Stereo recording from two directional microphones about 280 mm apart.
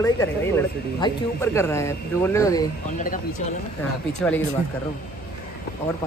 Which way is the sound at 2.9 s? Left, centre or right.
Left.